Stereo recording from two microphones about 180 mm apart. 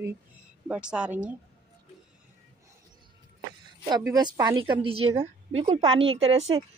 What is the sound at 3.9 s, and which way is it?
A woman's voice, 20° right (ahead or behind).